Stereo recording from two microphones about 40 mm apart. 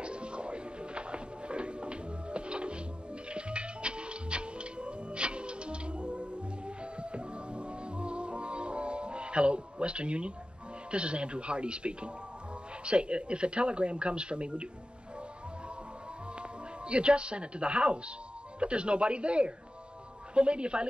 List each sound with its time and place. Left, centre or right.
0.0 s music: right
10.9 s speech: right
16.3 s speech: right